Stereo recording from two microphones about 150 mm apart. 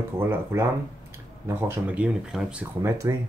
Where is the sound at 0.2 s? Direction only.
15° right (ahead or behind).